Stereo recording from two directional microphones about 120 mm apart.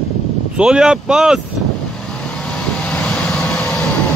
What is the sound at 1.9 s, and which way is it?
Vehicle, centre (ahead or behind).